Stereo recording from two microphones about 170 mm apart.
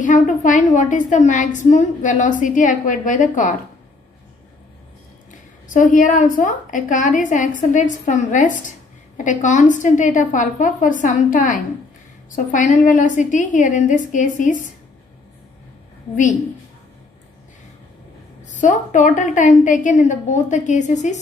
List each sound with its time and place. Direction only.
0.0 s a woman's voice: 50° left (ahead or behind)
5.3 s a woman's voice: 50° left (ahead or behind)
18.4 s a woman's voice: 45° left (ahead or behind)